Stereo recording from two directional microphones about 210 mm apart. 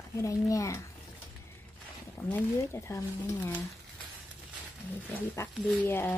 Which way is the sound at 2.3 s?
10° left (ahead or behind).